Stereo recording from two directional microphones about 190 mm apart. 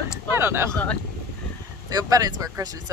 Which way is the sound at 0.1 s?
10° right (ahead or behind).